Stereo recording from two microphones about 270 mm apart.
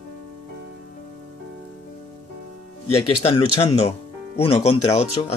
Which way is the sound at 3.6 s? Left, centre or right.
Left.